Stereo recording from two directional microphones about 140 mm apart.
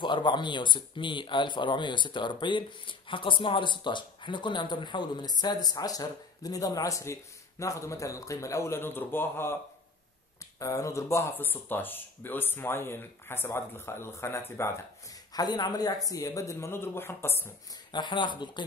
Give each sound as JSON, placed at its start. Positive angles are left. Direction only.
{"t": 0.0, "sound": "speech", "side_deg": 35}
{"t": 10.6, "sound": "a man's voice", "side_deg": 20}
{"t": 17.9, "sound": "speech", "side_deg": 35}